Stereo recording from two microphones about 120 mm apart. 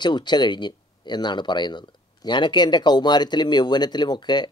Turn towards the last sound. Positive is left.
turn(degrees=35)  # may be behind; listen again after turning